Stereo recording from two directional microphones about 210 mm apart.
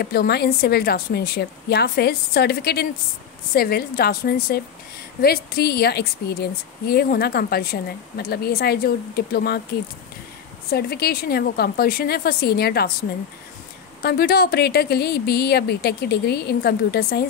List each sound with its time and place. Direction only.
0.0 s a woman's voice: 50° left (ahead or behind)
10.7 s a woman's voice: 50° left (ahead or behind)
14.0 s a woman's voice: 45° left (ahead or behind)